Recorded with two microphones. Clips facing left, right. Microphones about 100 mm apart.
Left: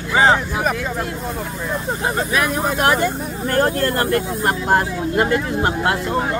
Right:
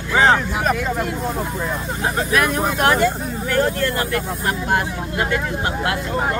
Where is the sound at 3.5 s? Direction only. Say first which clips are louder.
Left 2 dB; 45° left (ahead or behind).